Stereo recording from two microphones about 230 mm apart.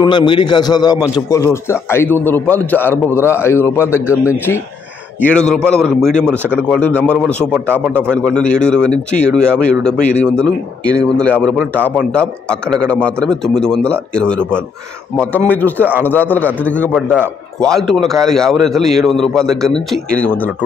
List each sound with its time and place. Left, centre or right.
0.0 s a man's voice: centre
5.2 s a man's voice: centre
7.5 s speech: centre
8.4 s a man's voice: centre
11.6 s speech: centre
12.1 s a man's voice: centre